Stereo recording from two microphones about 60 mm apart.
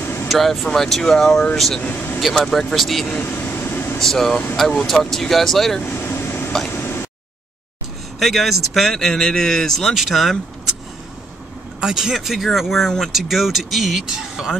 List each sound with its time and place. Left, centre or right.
0.0 s vehicle: left
0.3 s speech: centre
1.8 s speech: left
2.1 s speech: centre
3.2 s air conditioning: left
4.0 s speech: centre
5.8 s vehicle: left
6.7 s tick-tock: left
8.2 s speech: centre
11.8 s speech: centre